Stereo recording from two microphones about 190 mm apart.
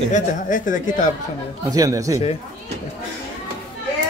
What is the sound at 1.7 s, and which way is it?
Speech, 15° right (ahead or behind).